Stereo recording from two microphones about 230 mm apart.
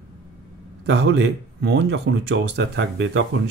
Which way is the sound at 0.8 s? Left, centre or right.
Right.